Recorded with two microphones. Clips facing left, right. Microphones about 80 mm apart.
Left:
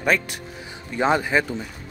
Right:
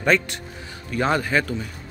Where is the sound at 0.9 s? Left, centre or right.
Centre.